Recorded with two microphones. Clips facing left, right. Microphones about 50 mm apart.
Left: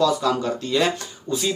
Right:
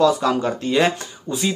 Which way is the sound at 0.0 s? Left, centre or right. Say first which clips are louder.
Right 3 dB; right.